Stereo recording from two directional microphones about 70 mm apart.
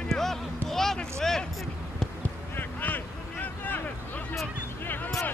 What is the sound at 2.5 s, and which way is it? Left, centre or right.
Vehicle, left.